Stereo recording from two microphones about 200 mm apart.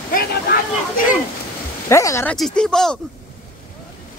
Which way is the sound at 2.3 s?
Centre (ahead or behind).